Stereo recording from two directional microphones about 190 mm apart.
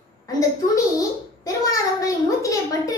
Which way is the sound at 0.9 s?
15° left (ahead or behind).